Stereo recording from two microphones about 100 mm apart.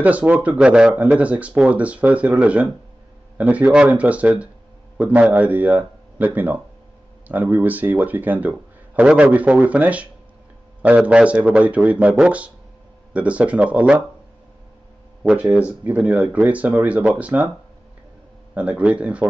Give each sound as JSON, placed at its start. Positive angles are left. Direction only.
{"t": 0.0, "sound": "speech", "side_deg": -15}
{"t": 15.5, "sound": "speech", "side_deg": -15}
{"t": 18.5, "sound": "speech", "side_deg": -15}